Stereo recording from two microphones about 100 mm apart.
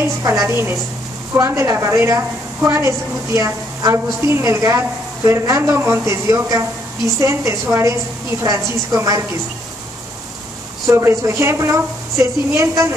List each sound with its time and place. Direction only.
0.0 s a woman's voice: 30° right (ahead or behind)
10.9 s a woman's voice: 30° right (ahead or behind)